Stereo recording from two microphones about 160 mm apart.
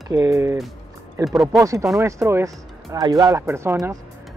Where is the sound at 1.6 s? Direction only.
20° right (ahead or behind).